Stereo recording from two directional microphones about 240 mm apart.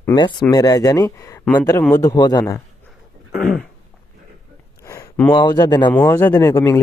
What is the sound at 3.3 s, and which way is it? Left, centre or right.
Throat clearing, left.